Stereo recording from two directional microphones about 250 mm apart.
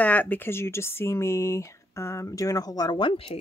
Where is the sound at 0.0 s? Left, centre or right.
Centre.